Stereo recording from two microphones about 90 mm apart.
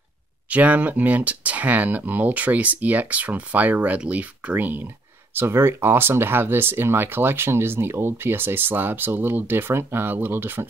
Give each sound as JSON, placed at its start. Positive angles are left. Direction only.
{"t": 0.5, "sound": "speech", "side_deg": -15}